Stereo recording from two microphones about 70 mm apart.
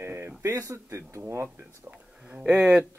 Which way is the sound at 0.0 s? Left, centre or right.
Right.